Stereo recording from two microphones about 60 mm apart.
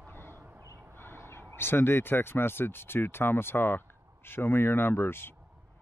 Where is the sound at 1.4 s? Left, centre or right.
Left.